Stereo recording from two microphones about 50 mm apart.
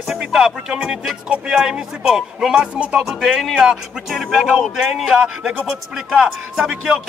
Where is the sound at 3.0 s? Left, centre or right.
Centre.